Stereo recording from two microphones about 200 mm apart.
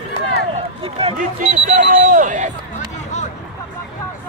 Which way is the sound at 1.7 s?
40° right (ahead or behind).